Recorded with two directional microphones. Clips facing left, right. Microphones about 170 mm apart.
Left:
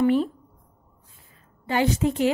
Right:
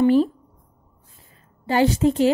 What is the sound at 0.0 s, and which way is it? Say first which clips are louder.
Speech: right 4 dB; 35° right (ahead or behind).